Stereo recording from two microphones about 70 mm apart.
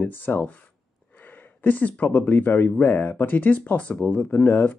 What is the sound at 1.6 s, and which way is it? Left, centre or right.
Speech, left.